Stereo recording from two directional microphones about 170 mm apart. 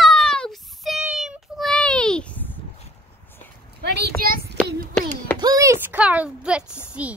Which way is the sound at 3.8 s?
75° right (ahead or behind).